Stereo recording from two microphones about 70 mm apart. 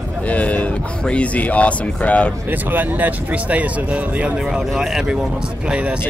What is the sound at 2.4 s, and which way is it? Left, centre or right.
Speech, right.